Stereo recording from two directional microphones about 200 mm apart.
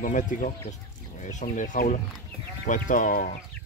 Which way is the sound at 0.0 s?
40° left (ahead or behind).